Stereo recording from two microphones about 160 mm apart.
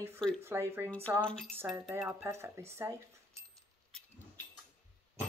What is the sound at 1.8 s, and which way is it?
Speech, 15° right (ahead or behind).